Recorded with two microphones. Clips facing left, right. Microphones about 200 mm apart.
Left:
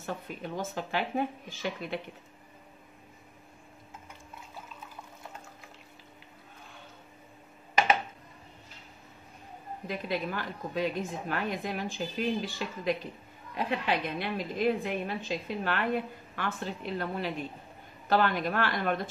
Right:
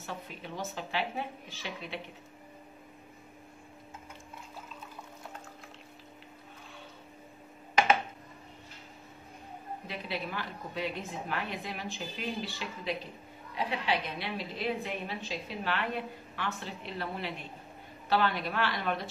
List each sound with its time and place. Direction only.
0.0 s a woman's voice: 50° left (ahead or behind)
9.8 s a woman's voice: 45° left (ahead or behind)